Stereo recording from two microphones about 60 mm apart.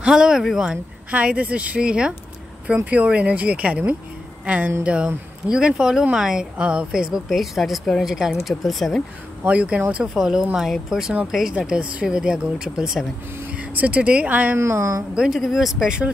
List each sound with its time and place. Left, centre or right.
0.0 s speech: centre
1.1 s speech: right
2.7 s speech: right; by 9.0 s centre
9.4 s speech: right
10.1 s speech: centre
13.6 s speech: right
14.6 s speech: right
15.1 s speech: centre